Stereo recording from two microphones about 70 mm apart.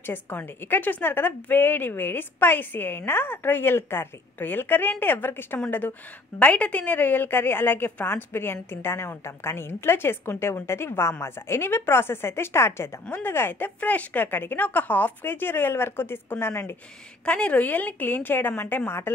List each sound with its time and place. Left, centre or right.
0.0 s a woman's voice: left
17.2 s a woman's voice: centre; by 19.1 s left